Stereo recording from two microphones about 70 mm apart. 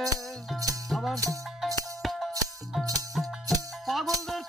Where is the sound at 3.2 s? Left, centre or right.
Centre.